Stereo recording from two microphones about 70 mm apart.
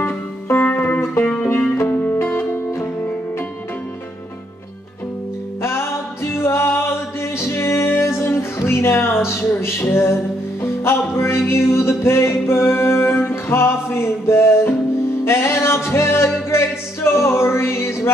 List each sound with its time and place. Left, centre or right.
0.0 s music: left
0.7 s music: left
1.2 s music: centre
2.0 s music: left
5.6 s music: left